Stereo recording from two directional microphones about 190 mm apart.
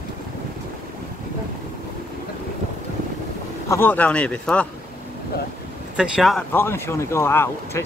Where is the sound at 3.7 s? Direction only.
10° left (ahead or behind).